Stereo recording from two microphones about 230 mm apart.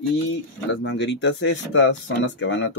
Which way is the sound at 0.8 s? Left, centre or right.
Left.